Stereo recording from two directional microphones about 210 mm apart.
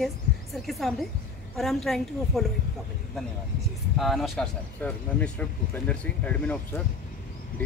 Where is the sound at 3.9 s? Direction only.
Centre (ahead or behind).